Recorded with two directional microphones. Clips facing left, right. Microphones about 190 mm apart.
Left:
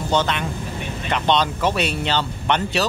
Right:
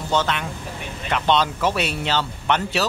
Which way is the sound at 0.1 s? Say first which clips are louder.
Left 1 dB; 5° right (ahead or behind).